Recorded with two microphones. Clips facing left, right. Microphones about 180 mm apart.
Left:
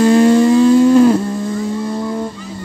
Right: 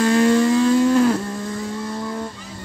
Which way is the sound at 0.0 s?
25° left (ahead or behind).